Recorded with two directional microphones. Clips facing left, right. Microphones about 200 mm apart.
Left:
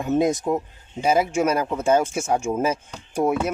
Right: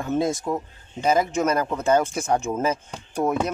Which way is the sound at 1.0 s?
10° left (ahead or behind).